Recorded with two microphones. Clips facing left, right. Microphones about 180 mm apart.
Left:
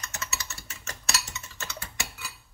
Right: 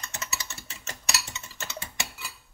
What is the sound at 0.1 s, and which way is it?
Typing, 30° right (ahead or behind).